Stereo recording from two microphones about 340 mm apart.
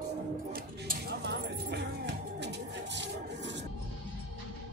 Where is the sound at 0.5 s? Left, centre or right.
Right.